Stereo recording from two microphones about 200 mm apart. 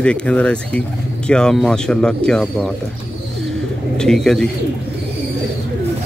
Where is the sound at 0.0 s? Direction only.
5° left (ahead or behind).